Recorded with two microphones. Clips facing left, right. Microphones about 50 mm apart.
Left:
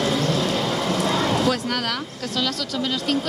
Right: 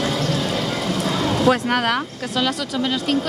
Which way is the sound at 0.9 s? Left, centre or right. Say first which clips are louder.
Left 1 dB; left.